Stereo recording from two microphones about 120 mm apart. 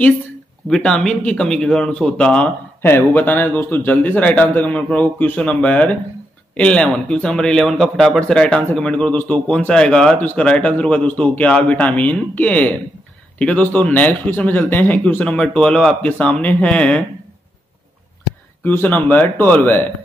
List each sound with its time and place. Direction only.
0.7 s speech: 5° left (ahead or behind)
2.8 s speech: 20° left (ahead or behind)
18.6 s speech: 15° left (ahead or behind)